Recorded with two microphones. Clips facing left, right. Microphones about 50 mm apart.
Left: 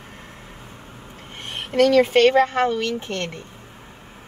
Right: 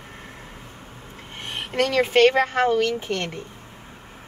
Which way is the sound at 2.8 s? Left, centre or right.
Centre.